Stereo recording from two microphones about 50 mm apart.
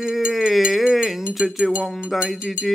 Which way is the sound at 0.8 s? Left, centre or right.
Centre.